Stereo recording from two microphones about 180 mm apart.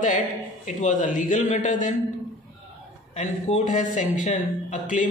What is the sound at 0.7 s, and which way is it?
Speech, 45° left (ahead or behind).